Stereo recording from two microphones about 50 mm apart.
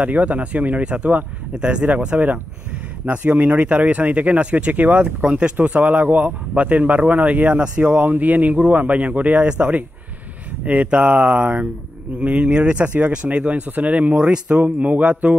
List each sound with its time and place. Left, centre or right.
0.0 s speech: right
14.1 s speech: centre
14.6 s speech: right